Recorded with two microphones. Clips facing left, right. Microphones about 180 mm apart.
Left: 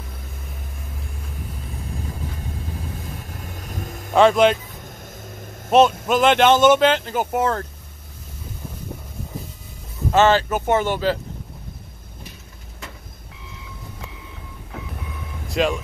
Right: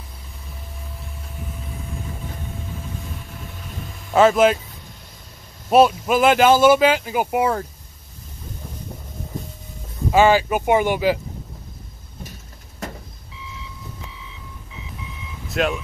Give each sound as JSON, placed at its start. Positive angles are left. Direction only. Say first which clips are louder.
{"t": 3.2, "sound": "vehicle", "louder": "left 1 dB", "side_deg": 45}
{"t": 4.1, "sound": "speech", "louder": "even", "side_deg": -5}
{"t": 5.7, "sound": "speech", "louder": "right 1 dB", "side_deg": -5}
{"t": 10.1, "sound": "speech", "louder": "right 1 dB", "side_deg": -10}
{"t": 12.8, "sound": "vehicle", "louder": "right 7 dB", "side_deg": -45}
{"t": 13.3, "sound": "vehicle", "louder": "right 3 dB", "side_deg": 55}
{"t": 15.5, "sound": "speech", "louder": "left 1 dB", "side_deg": 0}